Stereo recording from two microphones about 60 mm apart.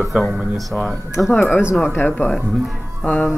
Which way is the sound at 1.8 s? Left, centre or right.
Left.